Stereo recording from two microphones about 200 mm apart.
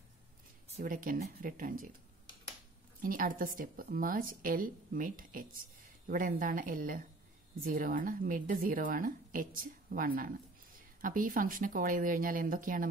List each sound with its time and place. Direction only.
0.7 s a woman's voice: 40° right (ahead or behind)
3.0 s a woman's voice: 45° right (ahead or behind)